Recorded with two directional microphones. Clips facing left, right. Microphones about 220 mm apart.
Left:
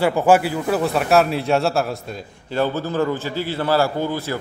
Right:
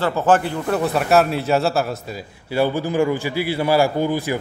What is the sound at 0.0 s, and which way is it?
A man's voice, 10° left (ahead or behind).